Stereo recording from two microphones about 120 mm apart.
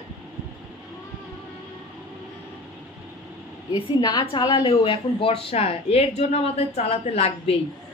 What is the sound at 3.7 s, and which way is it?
A woman's voice, 45° left (ahead or behind).